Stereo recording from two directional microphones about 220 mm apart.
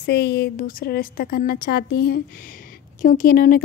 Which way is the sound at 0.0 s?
50° left (ahead or behind).